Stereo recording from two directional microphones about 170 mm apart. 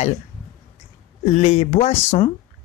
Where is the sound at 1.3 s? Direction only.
45° left (ahead or behind).